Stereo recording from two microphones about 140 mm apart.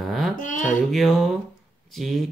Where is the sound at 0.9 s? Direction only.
Centre (ahead or behind).